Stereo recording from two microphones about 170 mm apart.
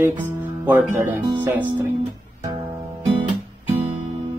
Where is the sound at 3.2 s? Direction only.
35° right (ahead or behind).